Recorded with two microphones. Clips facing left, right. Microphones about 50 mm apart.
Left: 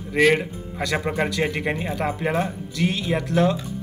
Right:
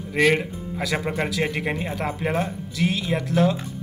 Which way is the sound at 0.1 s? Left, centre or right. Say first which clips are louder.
Left 2 dB; centre.